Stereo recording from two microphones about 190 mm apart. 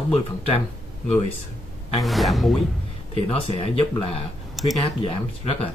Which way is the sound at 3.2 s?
30° left (ahead or behind).